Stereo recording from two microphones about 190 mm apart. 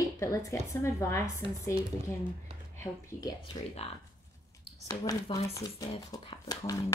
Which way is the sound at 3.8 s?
35° left (ahead or behind).